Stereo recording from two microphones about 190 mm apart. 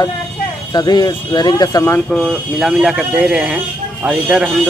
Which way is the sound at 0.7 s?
20° left (ahead or behind).